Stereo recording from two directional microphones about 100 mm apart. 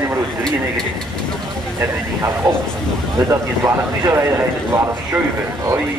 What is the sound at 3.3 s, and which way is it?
Speech, 30° right (ahead or behind).